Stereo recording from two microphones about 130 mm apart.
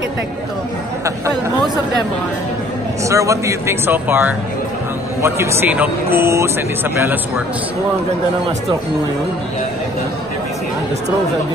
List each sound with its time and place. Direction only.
3.1 s speech: 25° right (ahead or behind)